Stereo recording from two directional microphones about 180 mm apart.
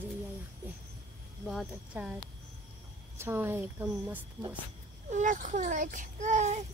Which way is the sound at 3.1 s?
15° right (ahead or behind).